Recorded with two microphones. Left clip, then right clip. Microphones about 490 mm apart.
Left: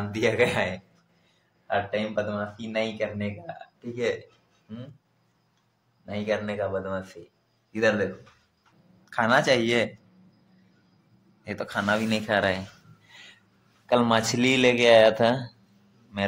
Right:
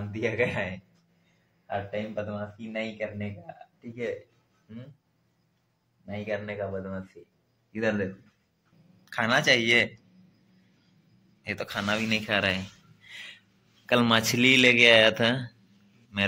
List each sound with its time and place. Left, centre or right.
0.1 s speech: right
1.7 s a man's voice: right
6.0 s a man's voice: right
11.4 s a man's voice: right